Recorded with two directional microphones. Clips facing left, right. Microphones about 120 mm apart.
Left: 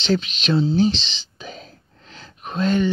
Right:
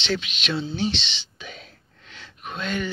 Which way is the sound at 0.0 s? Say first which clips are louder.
Left 6 dB; 40° left (ahead or behind).